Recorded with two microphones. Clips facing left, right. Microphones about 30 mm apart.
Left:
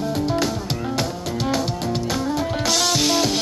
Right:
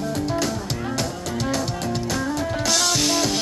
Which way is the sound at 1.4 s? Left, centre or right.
Centre.